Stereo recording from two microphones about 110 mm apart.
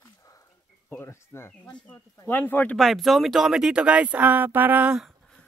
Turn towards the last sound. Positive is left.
turn(degrees=-10)  # may be behind; listen again after turning